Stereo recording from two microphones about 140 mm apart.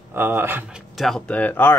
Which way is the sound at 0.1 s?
15° right (ahead or behind).